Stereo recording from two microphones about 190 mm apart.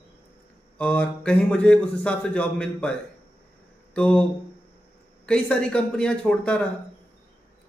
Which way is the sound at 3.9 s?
5° left (ahead or behind).